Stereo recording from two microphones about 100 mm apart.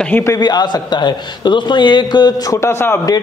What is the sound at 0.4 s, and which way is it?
A man's voice, 45° left (ahead or behind).